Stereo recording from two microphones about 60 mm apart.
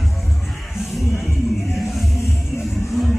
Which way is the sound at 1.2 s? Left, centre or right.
Centre.